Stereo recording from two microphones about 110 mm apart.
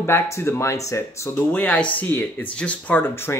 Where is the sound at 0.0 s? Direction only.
20° left (ahead or behind).